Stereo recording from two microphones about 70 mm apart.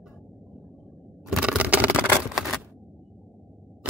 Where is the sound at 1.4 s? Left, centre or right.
Centre.